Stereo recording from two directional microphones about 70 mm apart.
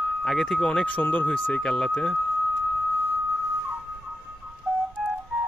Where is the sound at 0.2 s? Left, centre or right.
Centre.